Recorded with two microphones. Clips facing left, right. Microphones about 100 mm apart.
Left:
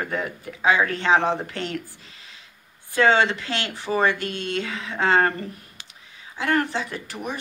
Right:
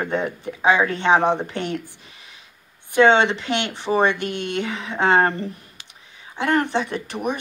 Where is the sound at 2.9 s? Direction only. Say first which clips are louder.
Right 4 dB; 20° right (ahead or behind).